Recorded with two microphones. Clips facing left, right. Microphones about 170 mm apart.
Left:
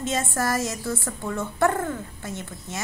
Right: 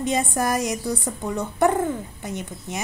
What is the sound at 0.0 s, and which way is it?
A woman's voice, 15° right (ahead or behind).